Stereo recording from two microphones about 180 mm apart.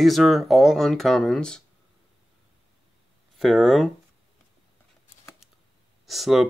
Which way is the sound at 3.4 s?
Centre (ahead or behind).